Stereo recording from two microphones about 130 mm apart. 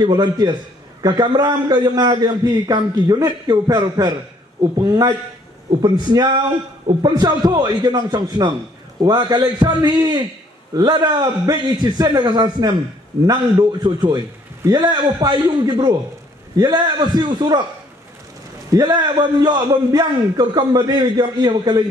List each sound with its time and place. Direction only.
0.0 s a man's voice: 30° right (ahead or behind)
18.7 s a man's voice: 30° right (ahead or behind)